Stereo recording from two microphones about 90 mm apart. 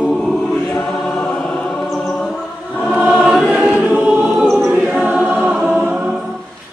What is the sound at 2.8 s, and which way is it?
Choir, 5° right (ahead or behind).